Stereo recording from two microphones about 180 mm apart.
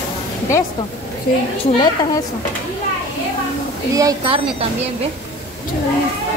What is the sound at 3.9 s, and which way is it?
Speech, 20° right (ahead or behind).